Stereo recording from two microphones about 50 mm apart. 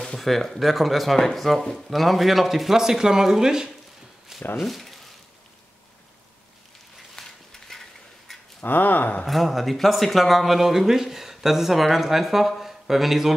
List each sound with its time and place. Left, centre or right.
0.0 s speech: centre
4.6 s speech: centre
7.2 s a sound: centre
8.6 s speech: left
9.2 s speech: centre